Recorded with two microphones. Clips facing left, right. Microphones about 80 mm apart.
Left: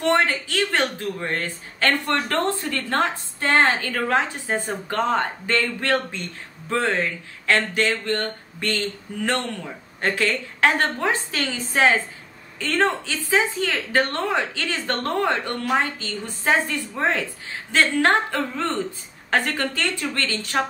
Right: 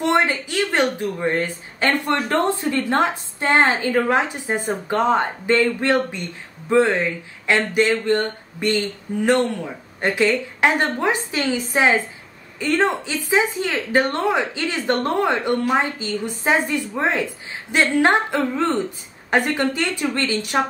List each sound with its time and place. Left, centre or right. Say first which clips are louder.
0.0 s a woman's voice: right 1 dB; centre